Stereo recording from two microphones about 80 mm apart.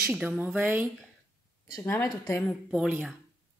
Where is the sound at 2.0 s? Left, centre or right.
Left.